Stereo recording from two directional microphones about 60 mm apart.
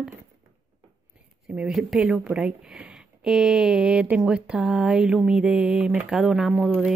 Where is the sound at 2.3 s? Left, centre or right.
Centre.